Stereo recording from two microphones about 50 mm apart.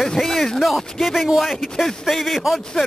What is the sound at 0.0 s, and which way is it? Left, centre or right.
Speech, centre.